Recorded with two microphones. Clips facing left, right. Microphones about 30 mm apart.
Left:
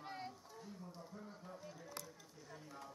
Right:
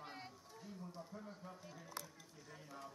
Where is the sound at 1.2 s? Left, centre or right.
Centre.